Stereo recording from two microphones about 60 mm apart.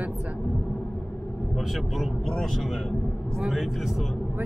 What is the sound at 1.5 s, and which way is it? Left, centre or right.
Speech, centre.